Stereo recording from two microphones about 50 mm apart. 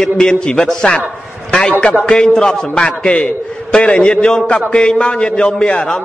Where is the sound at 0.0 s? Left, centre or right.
Centre.